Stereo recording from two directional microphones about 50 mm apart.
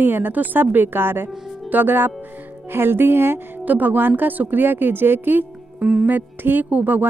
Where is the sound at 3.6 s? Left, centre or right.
Right.